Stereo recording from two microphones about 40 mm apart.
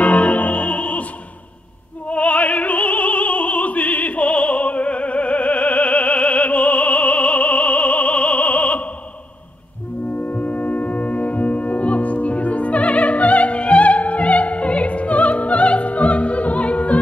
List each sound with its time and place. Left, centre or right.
0.0 s music: left
2.0 s opera: left
10.1 s music: left